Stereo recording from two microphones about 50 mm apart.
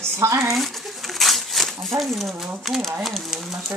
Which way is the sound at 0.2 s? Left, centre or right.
Right.